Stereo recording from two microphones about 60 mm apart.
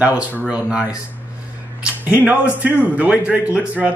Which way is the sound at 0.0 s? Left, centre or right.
Right.